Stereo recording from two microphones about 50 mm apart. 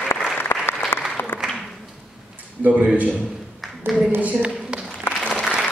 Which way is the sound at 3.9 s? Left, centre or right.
Centre.